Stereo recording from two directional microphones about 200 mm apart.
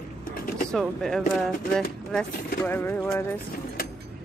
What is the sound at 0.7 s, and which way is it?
A woman's voice, 5° left (ahead or behind).